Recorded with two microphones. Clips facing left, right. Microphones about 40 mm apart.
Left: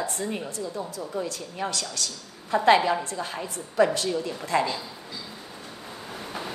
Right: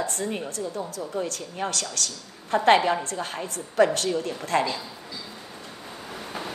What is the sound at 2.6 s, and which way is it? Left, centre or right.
A woman's voice, right.